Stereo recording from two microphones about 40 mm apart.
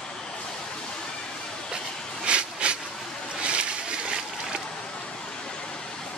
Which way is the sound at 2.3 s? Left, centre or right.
Right.